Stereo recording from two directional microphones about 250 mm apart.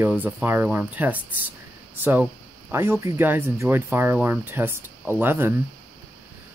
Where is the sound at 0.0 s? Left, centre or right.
Centre.